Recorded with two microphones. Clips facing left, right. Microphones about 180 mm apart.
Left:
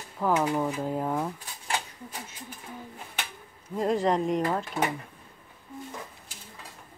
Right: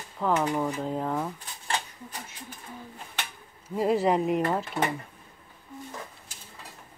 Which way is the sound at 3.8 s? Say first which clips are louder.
Right 1 dB; 5° right (ahead or behind).